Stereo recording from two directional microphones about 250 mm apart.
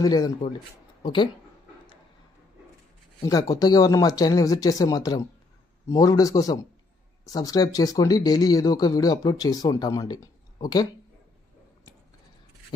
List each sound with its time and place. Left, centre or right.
0.0 s speech: centre
3.3 s speech: centre